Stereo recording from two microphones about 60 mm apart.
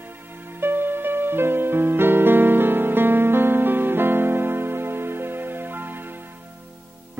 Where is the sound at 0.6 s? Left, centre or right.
Right.